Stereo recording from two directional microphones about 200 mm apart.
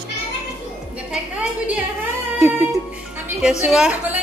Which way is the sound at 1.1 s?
5° right (ahead or behind).